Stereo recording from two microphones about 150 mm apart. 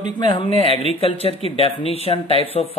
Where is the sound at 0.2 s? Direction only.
35° left (ahead or behind).